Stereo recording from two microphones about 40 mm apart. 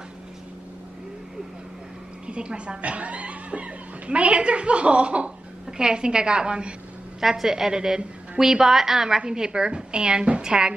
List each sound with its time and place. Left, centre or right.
2.2 s a woman's voice: right
7.2 s a woman's voice: centre